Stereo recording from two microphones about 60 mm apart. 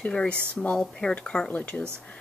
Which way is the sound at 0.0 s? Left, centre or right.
Centre.